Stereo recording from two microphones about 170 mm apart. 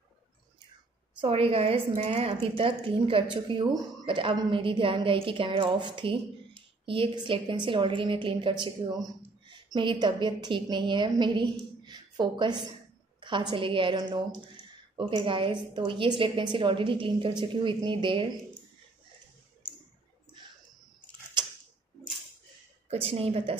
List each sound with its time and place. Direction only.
1.2 s a woman's voice: 35° right (ahead or behind)
7.2 s a woman's voice: 30° right (ahead or behind)
22.8 s a woman's voice: 35° right (ahead or behind)